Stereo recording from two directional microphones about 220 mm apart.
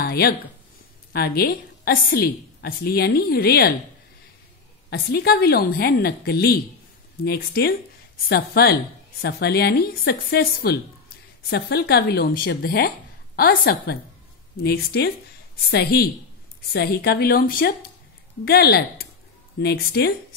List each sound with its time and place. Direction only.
0.0 s a sound: 45° left (ahead or behind)
1.1 s a woman's voice: 45° left (ahead or behind)
4.8 s a woman's voice: 45° left (ahead or behind)